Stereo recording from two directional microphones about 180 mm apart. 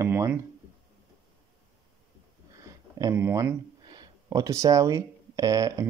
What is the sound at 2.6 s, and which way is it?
Speech, 20° right (ahead or behind).